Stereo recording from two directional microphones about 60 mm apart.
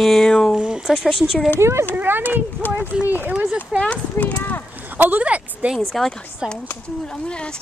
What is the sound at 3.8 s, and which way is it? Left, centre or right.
Speech, left.